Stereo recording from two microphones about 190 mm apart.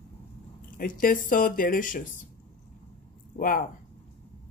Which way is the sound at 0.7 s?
45° left (ahead or behind).